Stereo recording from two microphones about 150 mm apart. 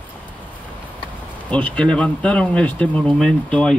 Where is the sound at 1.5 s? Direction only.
10° left (ahead or behind).